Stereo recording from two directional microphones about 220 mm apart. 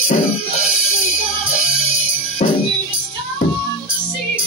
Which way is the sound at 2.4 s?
30° left (ahead or behind).